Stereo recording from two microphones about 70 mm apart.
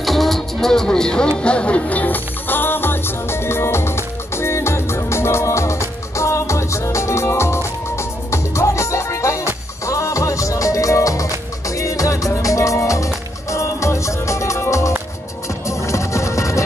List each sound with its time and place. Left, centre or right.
0.0 s music: centre; by 16.6 s left